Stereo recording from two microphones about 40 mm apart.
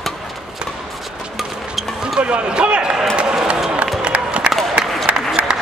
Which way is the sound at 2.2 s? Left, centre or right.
Right.